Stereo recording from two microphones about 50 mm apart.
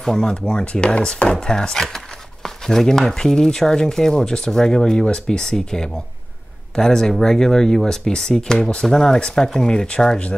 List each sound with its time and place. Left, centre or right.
0.0 s speech: centre